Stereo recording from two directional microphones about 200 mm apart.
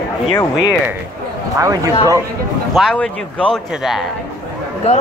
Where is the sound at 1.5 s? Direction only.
15° right (ahead or behind).